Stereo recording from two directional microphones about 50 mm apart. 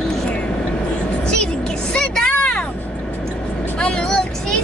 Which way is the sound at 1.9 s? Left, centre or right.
Centre.